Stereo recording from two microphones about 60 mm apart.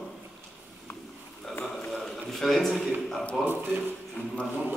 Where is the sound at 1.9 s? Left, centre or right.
Centre.